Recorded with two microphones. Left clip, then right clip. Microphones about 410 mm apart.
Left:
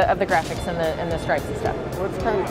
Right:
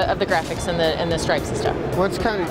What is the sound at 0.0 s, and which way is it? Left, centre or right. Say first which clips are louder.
Speech: left 1 dB; left.